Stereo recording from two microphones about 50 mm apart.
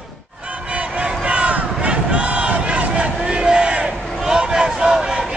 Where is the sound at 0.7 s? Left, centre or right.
Right.